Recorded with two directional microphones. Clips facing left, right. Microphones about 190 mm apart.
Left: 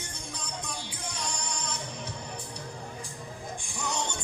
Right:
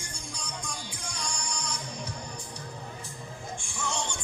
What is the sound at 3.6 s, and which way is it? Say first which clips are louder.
Music: left 1 dB; 20° left (ahead or behind).